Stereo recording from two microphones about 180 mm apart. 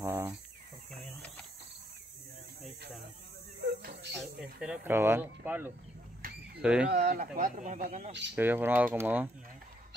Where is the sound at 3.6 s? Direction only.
60° right (ahead or behind).